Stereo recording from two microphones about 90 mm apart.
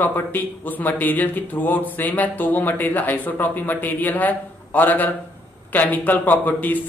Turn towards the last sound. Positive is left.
turn(degrees=20)  # may be behind; listen again after turning